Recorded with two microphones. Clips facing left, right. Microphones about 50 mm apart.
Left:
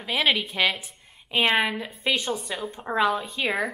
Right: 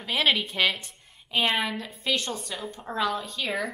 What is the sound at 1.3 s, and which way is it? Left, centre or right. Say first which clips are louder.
Speech: left 3 dB; centre.